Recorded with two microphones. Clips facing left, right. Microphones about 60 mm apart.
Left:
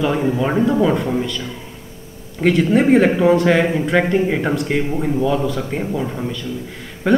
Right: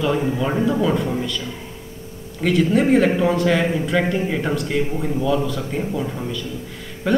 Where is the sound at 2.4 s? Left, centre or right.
Centre.